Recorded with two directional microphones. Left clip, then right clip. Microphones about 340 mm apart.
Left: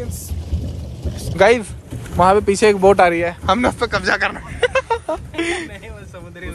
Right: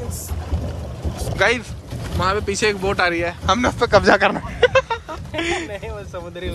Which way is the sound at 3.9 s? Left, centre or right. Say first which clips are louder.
Right 4 dB; centre.